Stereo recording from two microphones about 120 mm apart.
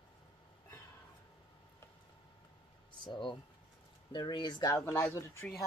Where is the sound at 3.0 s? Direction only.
45° left (ahead or behind).